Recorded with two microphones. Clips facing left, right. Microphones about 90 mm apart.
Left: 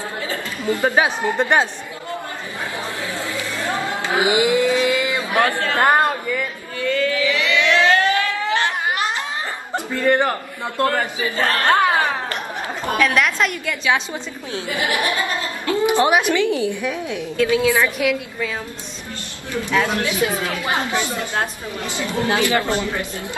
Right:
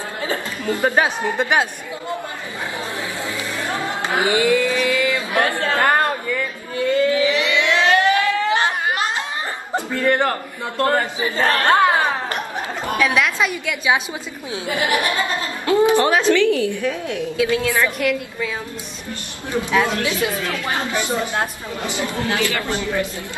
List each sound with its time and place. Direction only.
0.8 s a woman's voice: 5° left (ahead or behind)
1.4 s a woman's voice: 10° right (ahead or behind)
4.1 s a sound: 20° left (ahead or behind)
5.8 s chatter: 20° left (ahead or behind)
6.8 s a sound: 25° right (ahead or behind)
10.0 s a woman's voice: 15° left (ahead or behind)
10.9 s a woman's voice: 25° right (ahead or behind)
15.1 s a sound: 20° right (ahead or behind)
15.9 s a woman's voice: 15° left (ahead or behind)
17.9 s a woman's voice: centre (ahead or behind)
19.7 s a woman's voice: 15° right (ahead or behind)
20.4 s a man's voice: 20° left (ahead or behind)
21.1 s a woman's voice: 20° right (ahead or behind)
22.1 s a man's voice: 20° left (ahead or behind)